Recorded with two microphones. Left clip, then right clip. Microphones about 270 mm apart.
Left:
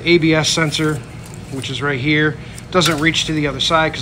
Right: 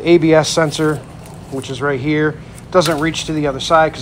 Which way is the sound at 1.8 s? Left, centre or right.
Centre.